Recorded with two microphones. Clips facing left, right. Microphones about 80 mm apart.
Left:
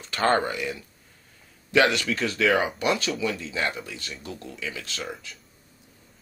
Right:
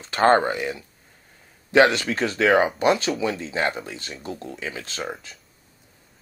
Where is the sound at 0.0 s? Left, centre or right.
Right.